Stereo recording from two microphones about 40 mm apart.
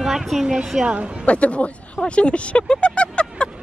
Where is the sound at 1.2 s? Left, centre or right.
Left.